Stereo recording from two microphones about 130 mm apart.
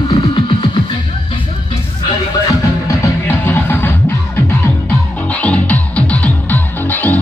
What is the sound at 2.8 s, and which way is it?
Music, 20° left (ahead or behind).